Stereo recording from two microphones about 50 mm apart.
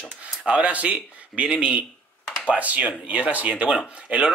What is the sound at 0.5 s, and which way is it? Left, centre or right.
Speech, right.